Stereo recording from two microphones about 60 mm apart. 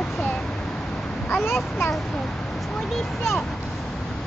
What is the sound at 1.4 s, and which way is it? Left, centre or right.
Speech, left.